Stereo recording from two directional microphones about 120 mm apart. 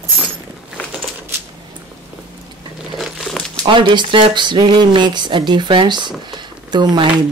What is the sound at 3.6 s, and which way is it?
Speech, 40° right (ahead or behind).